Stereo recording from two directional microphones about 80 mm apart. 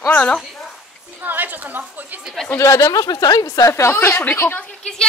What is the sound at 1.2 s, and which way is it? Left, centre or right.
A woman's voice, right.